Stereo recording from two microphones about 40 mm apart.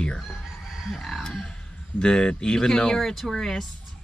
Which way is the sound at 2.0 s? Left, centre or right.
Centre.